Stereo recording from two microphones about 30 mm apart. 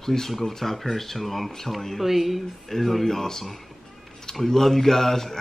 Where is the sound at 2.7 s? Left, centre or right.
Centre.